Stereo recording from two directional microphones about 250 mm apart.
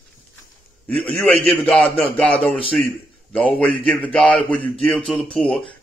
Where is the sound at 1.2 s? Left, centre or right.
Centre.